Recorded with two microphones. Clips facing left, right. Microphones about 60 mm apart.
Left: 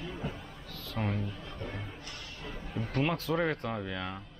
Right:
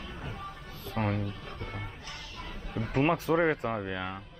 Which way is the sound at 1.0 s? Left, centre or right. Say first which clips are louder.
Right 3 dB; right.